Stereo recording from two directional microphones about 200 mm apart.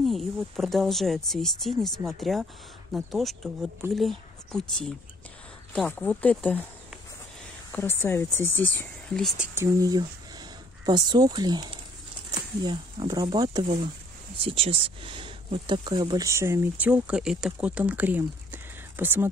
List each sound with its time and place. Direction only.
0.0 s speech: centre (ahead or behind)
7.7 s speech: 10° left (ahead or behind)
9.6 s speech: 20° right (ahead or behind)